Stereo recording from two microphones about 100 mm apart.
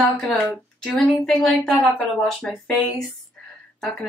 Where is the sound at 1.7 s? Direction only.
15° left (ahead or behind).